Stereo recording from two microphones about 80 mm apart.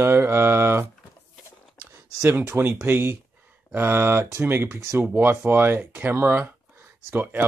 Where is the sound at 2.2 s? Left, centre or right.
Right.